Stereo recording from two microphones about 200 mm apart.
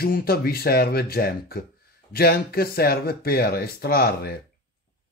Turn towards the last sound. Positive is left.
turn(degrees=50)  # may be behind; listen again after turning